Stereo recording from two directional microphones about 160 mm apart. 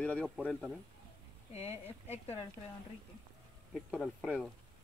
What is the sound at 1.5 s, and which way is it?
Speech, 40° left (ahead or behind).